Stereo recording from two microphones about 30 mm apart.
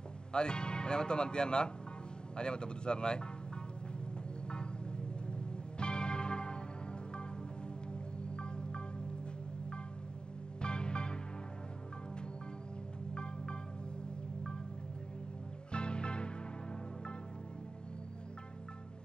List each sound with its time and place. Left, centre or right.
0.3 s speech: left
4.5 s music: left
7.9 s music: left
10.6 s music: left
13.1 s music: left
15.7 s music: left